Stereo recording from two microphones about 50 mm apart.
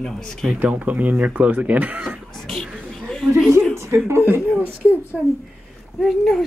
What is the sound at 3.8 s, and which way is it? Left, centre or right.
Speech, right.